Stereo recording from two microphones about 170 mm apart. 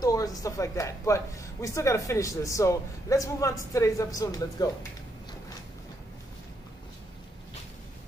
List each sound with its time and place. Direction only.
0.0 s speech: 20° left (ahead or behind)